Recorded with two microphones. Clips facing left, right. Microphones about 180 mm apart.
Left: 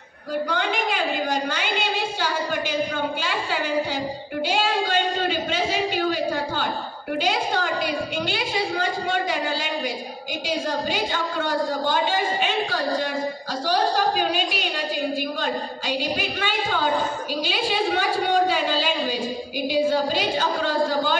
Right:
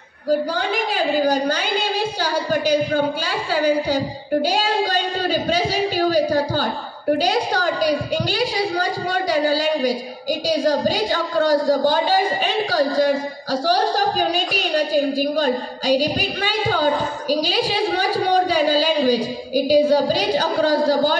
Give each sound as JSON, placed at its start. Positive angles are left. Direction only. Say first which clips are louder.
{"t": 0.5, "sound": "a woman's voice", "louder": "right 2 dB", "side_deg": -35}